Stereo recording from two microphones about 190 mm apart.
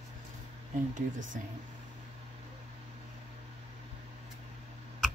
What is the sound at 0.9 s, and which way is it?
Speech, 45° right (ahead or behind).